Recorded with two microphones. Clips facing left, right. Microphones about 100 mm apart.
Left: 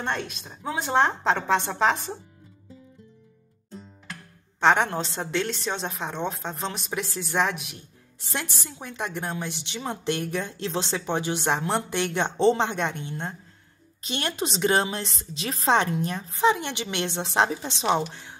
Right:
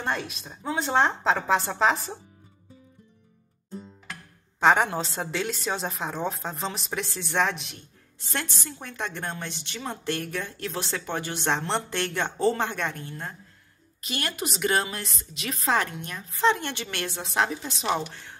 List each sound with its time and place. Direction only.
0.0 s a woman's voice: 5° right (ahead or behind)
4.6 s a woman's voice: 5° right (ahead or behind); by 16.3 s 30° left (ahead or behind)
16.3 s speech: 15° left (ahead or behind)